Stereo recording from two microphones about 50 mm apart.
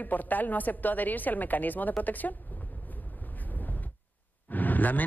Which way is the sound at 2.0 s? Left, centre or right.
Left.